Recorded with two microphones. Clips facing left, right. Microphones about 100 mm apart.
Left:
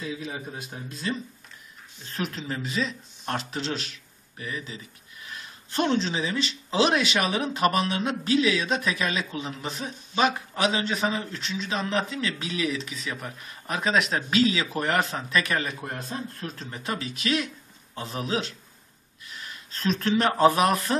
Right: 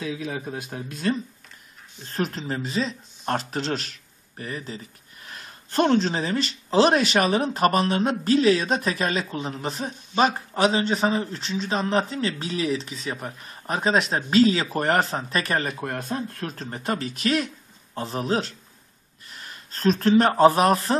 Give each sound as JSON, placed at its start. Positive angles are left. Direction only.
{"t": 0.0, "sound": "speech", "side_deg": -60}
{"t": 2.1, "sound": "speech", "side_deg": -40}
{"t": 15.8, "sound": "speech", "side_deg": -60}
{"t": 16.7, "sound": "speech", "side_deg": -45}